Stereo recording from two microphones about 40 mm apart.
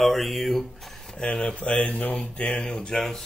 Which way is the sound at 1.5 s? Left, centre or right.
Left.